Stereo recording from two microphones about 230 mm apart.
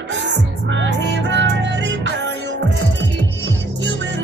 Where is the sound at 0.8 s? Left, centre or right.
Right.